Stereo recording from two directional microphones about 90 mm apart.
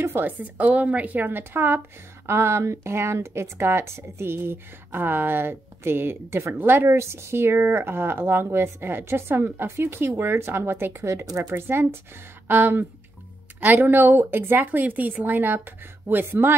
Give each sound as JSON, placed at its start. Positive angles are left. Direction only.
{"t": 0.0, "sound": "a woman's voice", "side_deg": -25}